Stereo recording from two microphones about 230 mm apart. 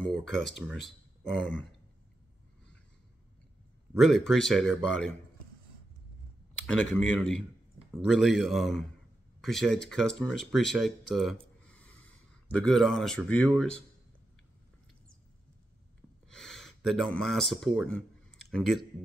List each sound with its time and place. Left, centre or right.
0.0 s speech: centre
4.0 s speech: centre
6.6 s speech: centre
11.6 s a sound: centre
12.5 s speech: centre
16.3 s speech: centre